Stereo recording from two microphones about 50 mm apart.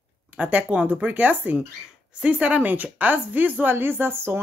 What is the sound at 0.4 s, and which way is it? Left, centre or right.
Speech, right.